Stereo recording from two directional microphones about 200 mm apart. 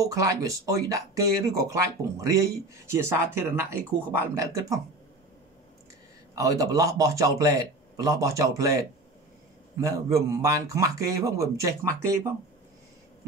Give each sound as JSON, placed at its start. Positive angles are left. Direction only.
{"t": 0.0, "sound": "a man's voice", "side_deg": -15}
{"t": 6.3, "sound": "a man's voice", "side_deg": -15}